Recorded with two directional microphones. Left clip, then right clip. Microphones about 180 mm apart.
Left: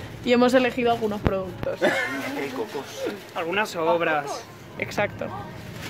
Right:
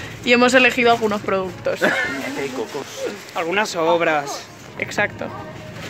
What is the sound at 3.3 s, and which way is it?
Speech, 35° right (ahead or behind).